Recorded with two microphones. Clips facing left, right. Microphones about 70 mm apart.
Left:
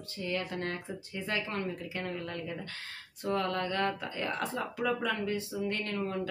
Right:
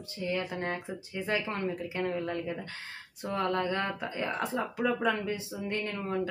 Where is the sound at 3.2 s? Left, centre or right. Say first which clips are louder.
Right 1 dB; centre.